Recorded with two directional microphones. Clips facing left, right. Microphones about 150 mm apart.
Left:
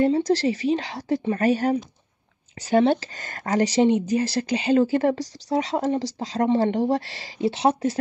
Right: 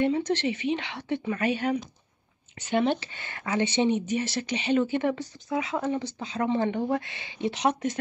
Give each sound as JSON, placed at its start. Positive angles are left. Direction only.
{"t": 0.0, "sound": "speech", "side_deg": 35}